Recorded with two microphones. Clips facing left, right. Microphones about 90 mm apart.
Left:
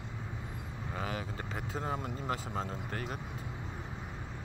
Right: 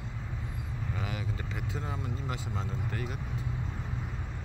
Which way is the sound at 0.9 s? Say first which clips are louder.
Left 1 dB; 35° left (ahead or behind).